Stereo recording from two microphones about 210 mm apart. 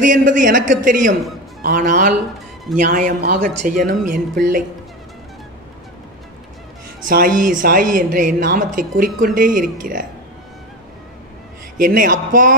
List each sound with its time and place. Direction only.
0.0 s a woman's voice: 40° right (ahead or behind)
7.1 s a woman's voice: 40° right (ahead or behind)
11.8 s a woman's voice: 40° right (ahead or behind)